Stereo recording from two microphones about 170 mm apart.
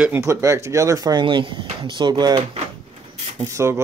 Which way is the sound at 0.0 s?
15° right (ahead or behind).